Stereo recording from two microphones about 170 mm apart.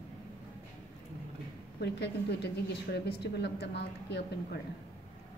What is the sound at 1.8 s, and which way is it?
A woman's voice, 75° left (ahead or behind).